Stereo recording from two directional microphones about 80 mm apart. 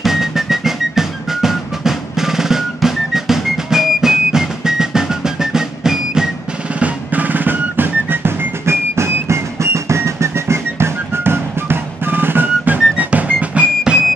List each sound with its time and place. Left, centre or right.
0.0 s music: centre
6.8 s music: right